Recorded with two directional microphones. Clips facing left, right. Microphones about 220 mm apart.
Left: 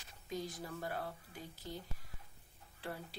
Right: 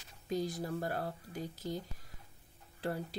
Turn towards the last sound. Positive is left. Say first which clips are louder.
# right 8 dB
turn(degrees=-40)  # may be behind; listen again after turning